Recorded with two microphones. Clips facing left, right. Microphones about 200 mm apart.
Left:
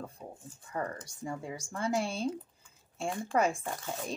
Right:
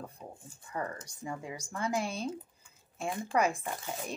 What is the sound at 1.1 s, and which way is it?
Speech, 45° left (ahead or behind).